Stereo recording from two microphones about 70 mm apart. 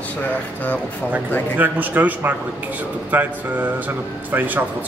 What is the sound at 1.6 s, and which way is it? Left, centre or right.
A man's voice, right.